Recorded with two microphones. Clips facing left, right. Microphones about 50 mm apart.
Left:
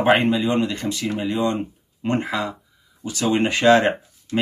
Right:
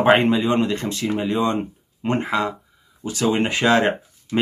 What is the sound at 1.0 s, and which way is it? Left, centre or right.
Speech, centre.